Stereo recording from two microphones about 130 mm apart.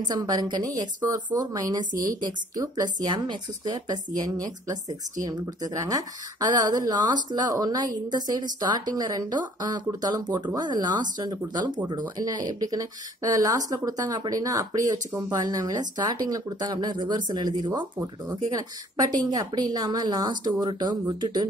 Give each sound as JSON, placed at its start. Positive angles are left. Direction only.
{"t": 0.1, "sound": "speech", "side_deg": -30}
{"t": 1.9, "sound": "a woman's voice", "side_deg": -90}
{"t": 2.2, "sound": "a woman's voice", "side_deg": -30}